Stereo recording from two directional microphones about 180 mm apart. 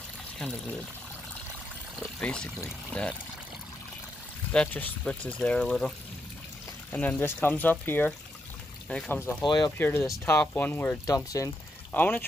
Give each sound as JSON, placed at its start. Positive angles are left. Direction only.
{"t": 2.0, "sound": "speech", "side_deg": 5}
{"t": 4.5, "sound": "speech", "side_deg": 5}
{"t": 9.4, "sound": "speech", "side_deg": 25}
{"t": 9.8, "sound": "speech", "side_deg": 10}